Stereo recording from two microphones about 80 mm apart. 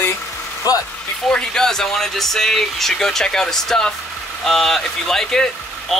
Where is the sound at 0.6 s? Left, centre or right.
Left.